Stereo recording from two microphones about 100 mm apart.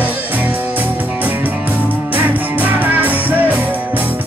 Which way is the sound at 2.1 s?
15° right (ahead or behind).